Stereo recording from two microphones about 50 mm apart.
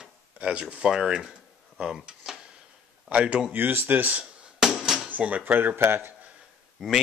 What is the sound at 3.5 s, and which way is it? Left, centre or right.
Speech, right.